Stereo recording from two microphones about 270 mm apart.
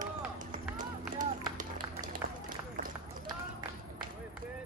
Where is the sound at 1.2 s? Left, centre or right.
Right.